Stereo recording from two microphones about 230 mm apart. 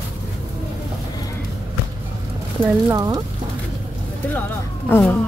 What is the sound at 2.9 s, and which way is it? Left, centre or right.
Speech, centre.